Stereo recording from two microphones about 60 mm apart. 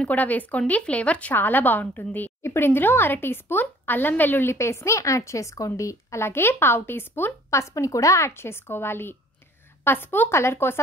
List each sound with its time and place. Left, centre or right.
0.0 s speech: left
1.3 s speech: left
6.2 s speech: left
7.5 s speech: left
8.3 s speech: left
10.3 s speech: left